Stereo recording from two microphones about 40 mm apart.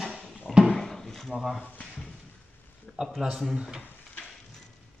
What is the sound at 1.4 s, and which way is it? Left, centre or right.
Speech, centre.